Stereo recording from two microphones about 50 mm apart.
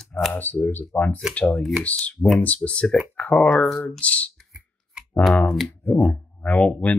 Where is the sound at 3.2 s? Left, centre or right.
Left.